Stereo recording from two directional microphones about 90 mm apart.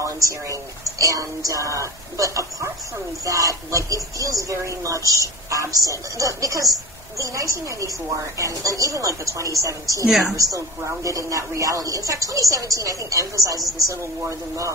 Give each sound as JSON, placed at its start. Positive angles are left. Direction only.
{"t": 0.0, "sound": "speech", "side_deg": -35}
{"t": 10.0, "sound": "a woman's voice", "side_deg": 0}
{"t": 10.3, "sound": "speech", "side_deg": -40}
{"t": 13.6, "sound": "a woman's voice", "side_deg": 0}